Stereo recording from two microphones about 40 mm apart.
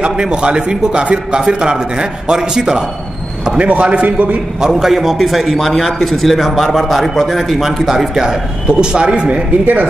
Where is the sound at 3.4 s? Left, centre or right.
Right.